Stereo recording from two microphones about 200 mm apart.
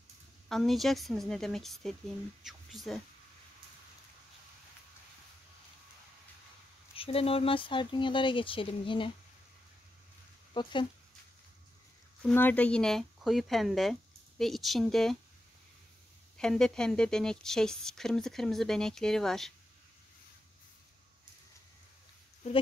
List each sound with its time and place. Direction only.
0.5 s a woman's voice: centre (ahead or behind)
7.0 s speech: 30° left (ahead or behind)
10.5 s speech: 25° left (ahead or behind)
12.2 s a woman's voice: 5° left (ahead or behind)
16.3 s a woman's voice: 5° left (ahead or behind)